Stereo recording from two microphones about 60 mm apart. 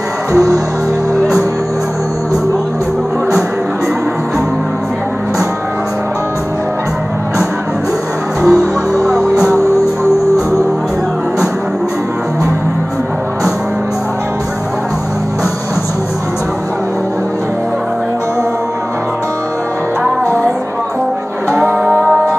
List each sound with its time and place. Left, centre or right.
8.4 s music: centre
21.5 s music: right